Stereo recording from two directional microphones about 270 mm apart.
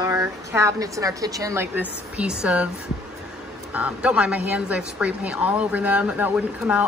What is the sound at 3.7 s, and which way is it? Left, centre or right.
A woman's voice, centre.